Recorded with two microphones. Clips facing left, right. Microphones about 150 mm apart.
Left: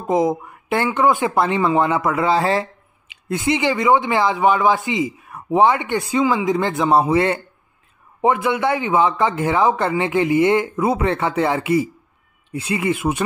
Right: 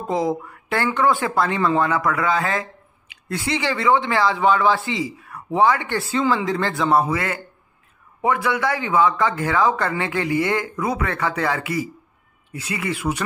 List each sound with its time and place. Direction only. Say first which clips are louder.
0.1 s speech: left 4 dB; 20° left (ahead or behind)